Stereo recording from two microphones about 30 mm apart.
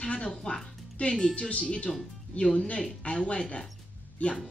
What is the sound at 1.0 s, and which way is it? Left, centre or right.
Speech, left.